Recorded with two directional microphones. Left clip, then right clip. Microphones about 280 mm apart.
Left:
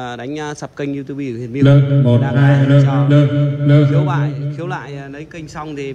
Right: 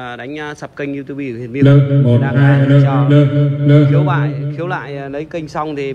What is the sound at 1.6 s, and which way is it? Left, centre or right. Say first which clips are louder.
Mantra: right 1 dB; centre.